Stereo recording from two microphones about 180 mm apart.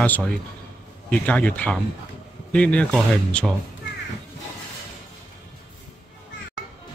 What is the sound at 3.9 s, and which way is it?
Music, 90° left.